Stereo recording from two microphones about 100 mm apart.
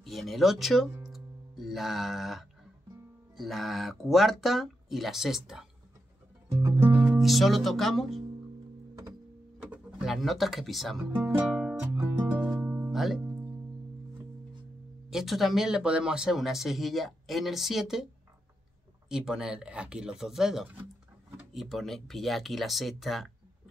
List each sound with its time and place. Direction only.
0.0 s speech: centre (ahead or behind)
1.1 s music: centre (ahead or behind)
3.3 s speech: centre (ahead or behind)
6.5 s music: 25° right (ahead or behind)
7.0 s speech: 5° right (ahead or behind)
10.0 s speech: centre (ahead or behind)
11.4 s music: 5° right (ahead or behind)
12.2 s music: 15° right (ahead or behind)
12.9 s music: centre (ahead or behind)
15.0 s speech: 5° right (ahead or behind)
19.0 s speech: 5° right (ahead or behind)